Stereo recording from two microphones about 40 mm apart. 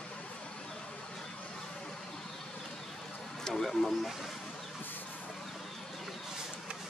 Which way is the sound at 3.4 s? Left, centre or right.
Centre.